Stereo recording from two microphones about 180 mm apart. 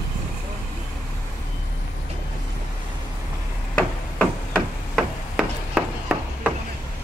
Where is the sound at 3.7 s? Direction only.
5° left (ahead or behind).